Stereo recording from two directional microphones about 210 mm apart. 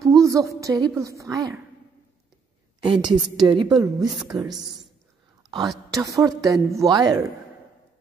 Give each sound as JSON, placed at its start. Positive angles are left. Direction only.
{"t": 0.0, "sound": "a sound", "side_deg": -15}
{"t": 0.6, "sound": "a woman's voice", "side_deg": -20}
{"t": 2.8, "sound": "a woman's voice", "side_deg": -25}
{"t": 5.9, "sound": "a woman's voice", "side_deg": -15}